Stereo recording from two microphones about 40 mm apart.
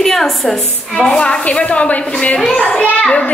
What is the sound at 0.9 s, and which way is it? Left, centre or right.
A woman's voice, left.